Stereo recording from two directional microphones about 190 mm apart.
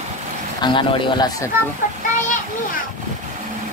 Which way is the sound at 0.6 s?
25° left (ahead or behind).